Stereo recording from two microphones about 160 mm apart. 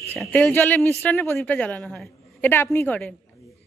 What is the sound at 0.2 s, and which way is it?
A man's voice, 5° left (ahead or behind).